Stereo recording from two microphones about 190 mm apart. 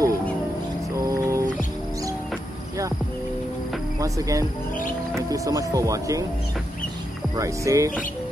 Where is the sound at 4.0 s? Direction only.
15° right (ahead or behind).